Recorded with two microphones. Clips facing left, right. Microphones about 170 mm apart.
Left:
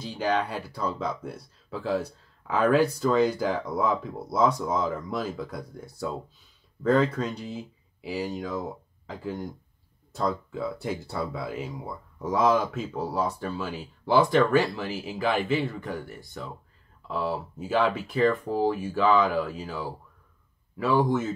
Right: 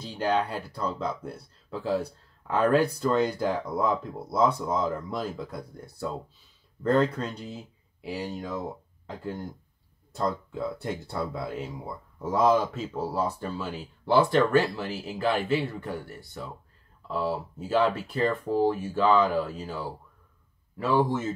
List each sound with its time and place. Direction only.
0.0 s speech: centre (ahead or behind)
17.6 s speech: 5° left (ahead or behind)